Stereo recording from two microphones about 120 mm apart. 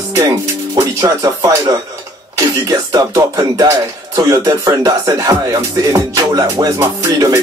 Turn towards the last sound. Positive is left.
turn(degrees=-25)  # may be behind; listen again after turning